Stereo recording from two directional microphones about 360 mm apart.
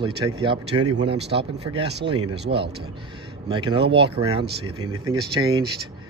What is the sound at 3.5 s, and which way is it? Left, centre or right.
Speech, centre.